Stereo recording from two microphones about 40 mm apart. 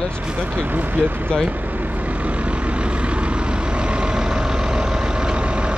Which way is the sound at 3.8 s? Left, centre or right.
Right.